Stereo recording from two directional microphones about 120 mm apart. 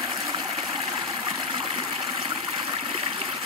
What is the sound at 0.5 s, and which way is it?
Water, 55° right (ahead or behind).